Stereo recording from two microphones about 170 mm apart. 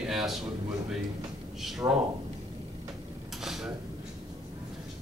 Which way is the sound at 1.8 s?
20° right (ahead or behind).